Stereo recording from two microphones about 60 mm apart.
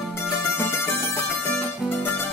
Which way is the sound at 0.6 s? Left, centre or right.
Left.